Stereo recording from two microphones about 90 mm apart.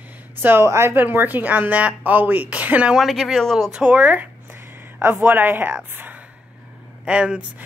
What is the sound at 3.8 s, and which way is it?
Speech, 15° right (ahead or behind).